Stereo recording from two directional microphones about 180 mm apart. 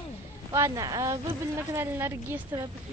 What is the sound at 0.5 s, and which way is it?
A woman's voice, 15° right (ahead or behind).